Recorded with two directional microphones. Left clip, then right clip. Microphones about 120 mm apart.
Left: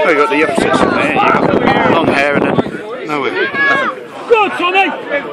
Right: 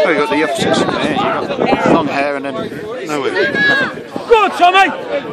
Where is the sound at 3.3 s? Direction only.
35° right (ahead or behind).